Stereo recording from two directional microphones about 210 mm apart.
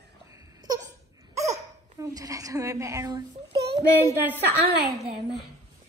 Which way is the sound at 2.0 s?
15° right (ahead or behind).